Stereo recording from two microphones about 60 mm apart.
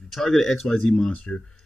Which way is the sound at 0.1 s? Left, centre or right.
Centre.